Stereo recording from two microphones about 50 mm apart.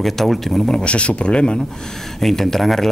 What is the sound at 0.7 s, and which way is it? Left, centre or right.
Speech, left.